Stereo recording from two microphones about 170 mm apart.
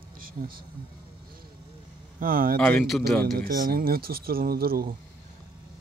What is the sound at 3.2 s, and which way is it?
Speech, 60° right (ahead or behind).